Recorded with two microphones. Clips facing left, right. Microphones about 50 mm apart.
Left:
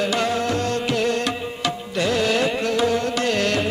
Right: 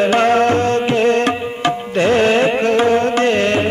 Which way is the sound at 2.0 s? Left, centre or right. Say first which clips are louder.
Right 7 dB; right.